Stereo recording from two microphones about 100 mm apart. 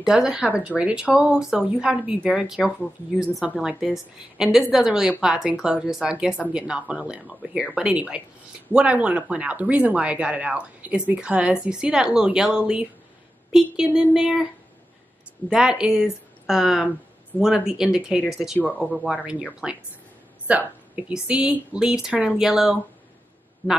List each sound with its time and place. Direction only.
0.0 s a woman's voice: 5° right (ahead or behind)
15.5 s a woman's voice: 10° right (ahead or behind)
19.6 s a woman's voice: 5° right (ahead or behind)
23.6 s a man's voice: 20° left (ahead or behind)